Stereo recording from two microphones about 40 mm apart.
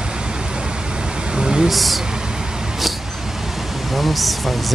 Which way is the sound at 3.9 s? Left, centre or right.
Centre.